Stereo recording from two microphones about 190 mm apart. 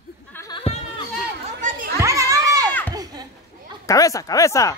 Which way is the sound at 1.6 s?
45° right (ahead or behind).